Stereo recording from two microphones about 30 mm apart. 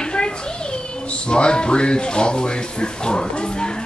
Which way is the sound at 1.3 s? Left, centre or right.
Left.